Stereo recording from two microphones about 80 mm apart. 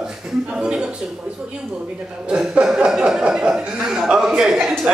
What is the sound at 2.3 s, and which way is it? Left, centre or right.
A man's voice, centre.